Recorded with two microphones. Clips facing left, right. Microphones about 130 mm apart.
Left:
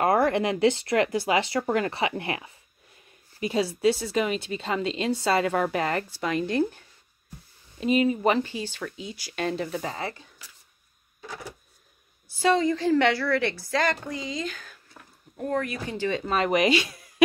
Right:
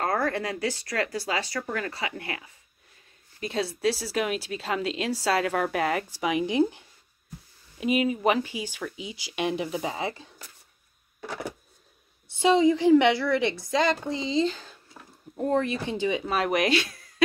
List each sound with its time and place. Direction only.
0.0 s speech: 15° left (ahead or behind)
3.3 s speech: 5° left (ahead or behind); by 6.8 s 15° right (ahead or behind)
7.8 s speech: 5° right (ahead or behind)
11.1 s a sound: 60° right (ahead or behind)
12.3 s a woman's voice: 20° right (ahead or behind); by 16.9 s centre (ahead or behind)